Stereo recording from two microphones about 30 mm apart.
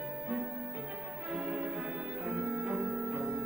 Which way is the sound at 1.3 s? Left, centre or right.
Right.